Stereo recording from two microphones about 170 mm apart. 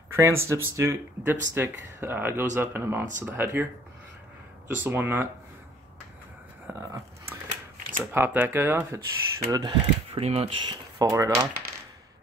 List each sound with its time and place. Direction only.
0.1 s speech: 15° right (ahead or behind)
4.6 s speech: 10° right (ahead or behind)
6.7 s a sound: 15° right (ahead or behind)
8.1 s speech: 10° right (ahead or behind)